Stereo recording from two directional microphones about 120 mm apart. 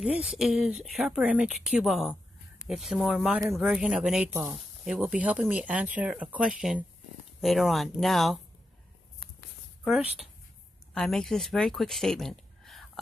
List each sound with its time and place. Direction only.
0.0 s speech: 10° right (ahead or behind)
9.8 s speech: centre (ahead or behind)